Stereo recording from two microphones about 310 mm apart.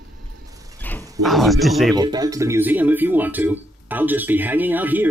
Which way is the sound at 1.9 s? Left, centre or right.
Centre.